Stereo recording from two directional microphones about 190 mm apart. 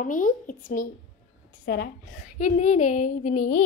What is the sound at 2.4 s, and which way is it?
Speech, 40° left (ahead or behind).